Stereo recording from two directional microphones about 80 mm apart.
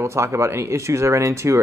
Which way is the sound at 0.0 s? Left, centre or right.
Right.